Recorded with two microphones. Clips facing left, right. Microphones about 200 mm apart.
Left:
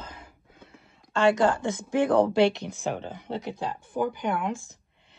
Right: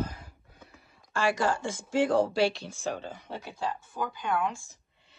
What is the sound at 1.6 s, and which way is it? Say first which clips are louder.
Speech: left 5 dB; 20° left (ahead or behind).